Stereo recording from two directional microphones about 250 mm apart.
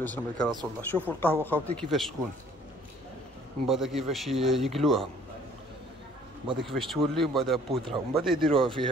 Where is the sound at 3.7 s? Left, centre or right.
Centre.